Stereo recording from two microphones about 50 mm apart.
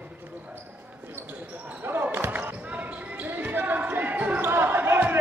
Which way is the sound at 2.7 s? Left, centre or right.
Right.